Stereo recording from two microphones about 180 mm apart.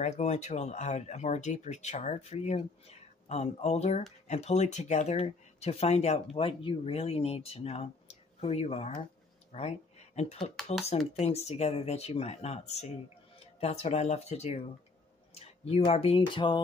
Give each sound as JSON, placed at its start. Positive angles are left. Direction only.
{"t": 0.0, "sound": "speech", "side_deg": 40}
{"t": 10.5, "sound": "speech", "side_deg": 0}
{"t": 11.1, "sound": "speech", "side_deg": 35}